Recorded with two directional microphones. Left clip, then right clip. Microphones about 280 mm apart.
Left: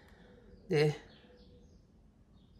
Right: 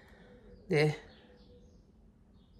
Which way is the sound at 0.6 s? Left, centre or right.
Centre.